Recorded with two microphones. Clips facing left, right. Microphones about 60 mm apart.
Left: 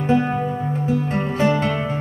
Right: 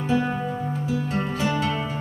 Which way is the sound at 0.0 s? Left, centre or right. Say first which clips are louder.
Left 5 dB; left.